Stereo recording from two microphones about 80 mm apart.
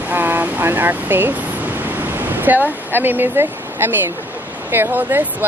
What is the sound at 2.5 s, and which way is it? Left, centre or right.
Speech, right.